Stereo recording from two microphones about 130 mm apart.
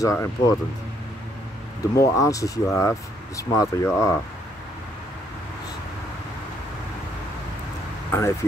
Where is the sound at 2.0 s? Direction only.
25° left (ahead or behind).